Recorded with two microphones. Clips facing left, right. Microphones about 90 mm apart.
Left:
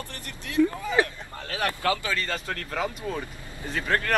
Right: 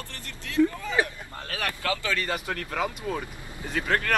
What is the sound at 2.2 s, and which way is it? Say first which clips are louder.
Speech: right 1 dB; 10° right (ahead or behind).